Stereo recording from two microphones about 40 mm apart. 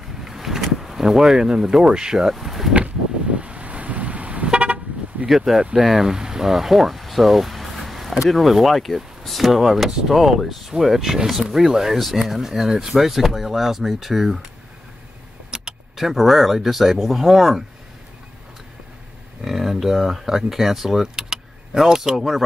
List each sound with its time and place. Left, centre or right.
0.2 s vehicle: centre
0.7 s speech: centre
2.3 s speech: centre
2.7 s vehicle: right
5.3 s speech: centre
15.5 s keys jangling: right
16.0 s speech: centre
19.4 s speech: centre